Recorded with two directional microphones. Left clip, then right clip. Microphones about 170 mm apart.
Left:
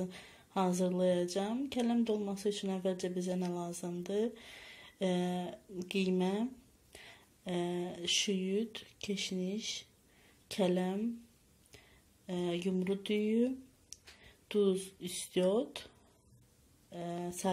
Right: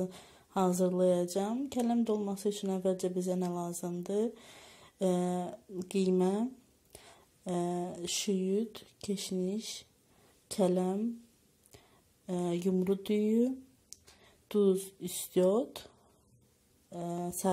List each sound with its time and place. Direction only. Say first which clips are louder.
0.0 s speech: right 4 dB; 20° right (ahead or behind)
12.3 s speech: right 3 dB; 20° right (ahead or behind)
16.9 s speech: right 3 dB; 20° right (ahead or behind)